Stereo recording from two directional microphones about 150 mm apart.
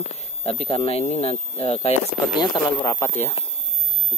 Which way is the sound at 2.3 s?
30° left (ahead or behind).